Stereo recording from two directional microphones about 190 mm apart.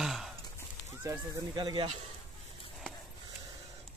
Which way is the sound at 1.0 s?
20° right (ahead or behind).